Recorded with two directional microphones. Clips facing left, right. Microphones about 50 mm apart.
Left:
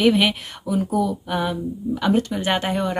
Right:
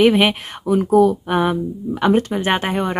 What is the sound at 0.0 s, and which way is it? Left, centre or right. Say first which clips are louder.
Speech: right 4 dB; right.